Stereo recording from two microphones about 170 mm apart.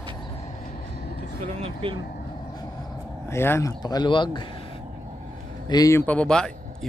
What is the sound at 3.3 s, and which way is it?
Speech, 15° left (ahead or behind).